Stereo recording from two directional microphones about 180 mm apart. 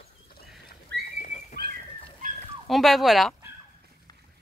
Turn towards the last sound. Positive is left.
turn(degrees=0)  # may be behind; listen again after turning